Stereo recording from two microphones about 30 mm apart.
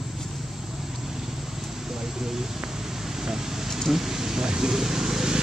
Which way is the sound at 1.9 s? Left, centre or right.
Centre.